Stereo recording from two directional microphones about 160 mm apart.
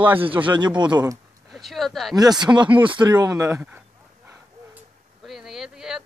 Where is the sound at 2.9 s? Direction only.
25° right (ahead or behind).